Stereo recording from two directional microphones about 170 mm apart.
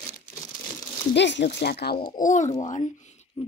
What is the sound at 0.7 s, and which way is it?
Crumpling, 20° left (ahead or behind).